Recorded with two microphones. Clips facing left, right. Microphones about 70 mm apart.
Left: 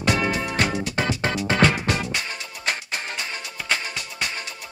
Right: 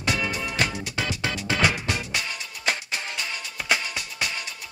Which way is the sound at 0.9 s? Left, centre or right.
Left.